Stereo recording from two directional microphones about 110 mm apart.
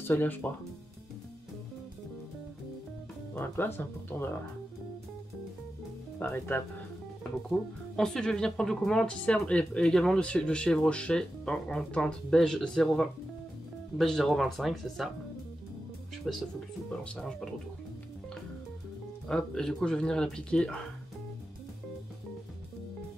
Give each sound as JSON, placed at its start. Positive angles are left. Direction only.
{"t": 0.0, "sound": "speech", "side_deg": 20}
{"t": 3.3, "sound": "speech", "side_deg": 20}
{"t": 6.1, "sound": "speech", "side_deg": 15}
{"t": 7.4, "sound": "speech", "side_deg": 5}
{"t": 16.3, "sound": "speech", "side_deg": -5}
{"t": 17.0, "sound": "speech", "side_deg": 10}
{"t": 19.2, "sound": "speech", "side_deg": 5}